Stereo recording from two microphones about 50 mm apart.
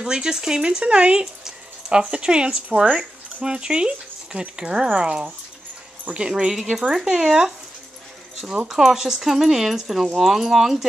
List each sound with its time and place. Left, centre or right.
0.0 s speech: centre
8.6 s speech: centre